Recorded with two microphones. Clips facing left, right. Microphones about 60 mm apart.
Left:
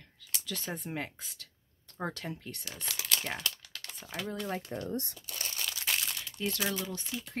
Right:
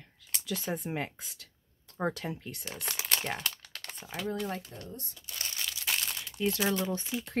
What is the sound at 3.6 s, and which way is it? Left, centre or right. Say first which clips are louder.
Typing: right 2 dB; right.